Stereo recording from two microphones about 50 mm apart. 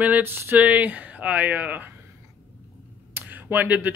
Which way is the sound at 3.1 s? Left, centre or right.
Right.